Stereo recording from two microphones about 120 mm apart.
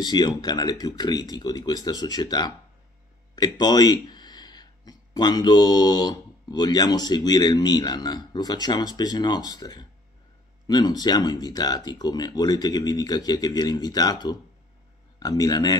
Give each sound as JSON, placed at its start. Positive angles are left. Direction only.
{"t": 0.0, "sound": "speech", "side_deg": 35}